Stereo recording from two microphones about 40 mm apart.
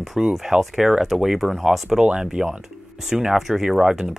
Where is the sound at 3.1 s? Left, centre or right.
Centre.